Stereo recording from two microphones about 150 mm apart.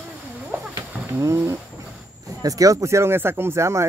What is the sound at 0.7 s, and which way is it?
Wild animals, 20° right (ahead or behind).